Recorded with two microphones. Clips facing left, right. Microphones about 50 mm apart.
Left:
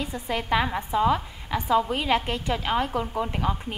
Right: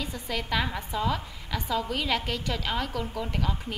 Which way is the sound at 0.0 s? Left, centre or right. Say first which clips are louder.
Left 4 dB; left.